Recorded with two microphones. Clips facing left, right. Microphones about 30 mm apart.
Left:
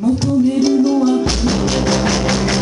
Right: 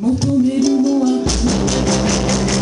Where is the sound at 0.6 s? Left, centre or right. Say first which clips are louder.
Left 1 dB; left.